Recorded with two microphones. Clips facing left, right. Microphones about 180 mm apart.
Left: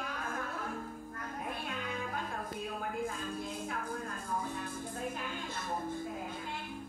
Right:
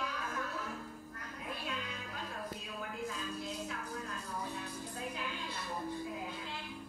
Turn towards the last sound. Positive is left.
turn(degrees=50)  # may be behind; listen again after turning